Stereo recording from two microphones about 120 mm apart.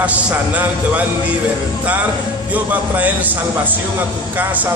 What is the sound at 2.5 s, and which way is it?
Speech, 15° right (ahead or behind).